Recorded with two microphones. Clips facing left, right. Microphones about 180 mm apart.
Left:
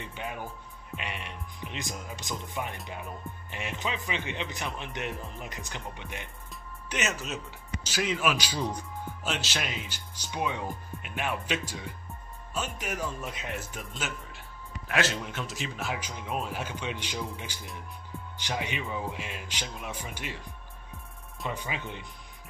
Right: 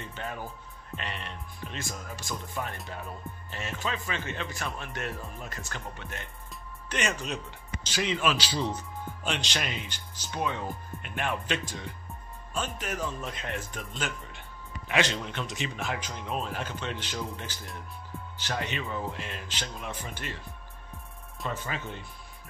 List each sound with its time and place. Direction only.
0.0 s speech: 15° left (ahead or behind)
21.5 s speech: 15° left (ahead or behind)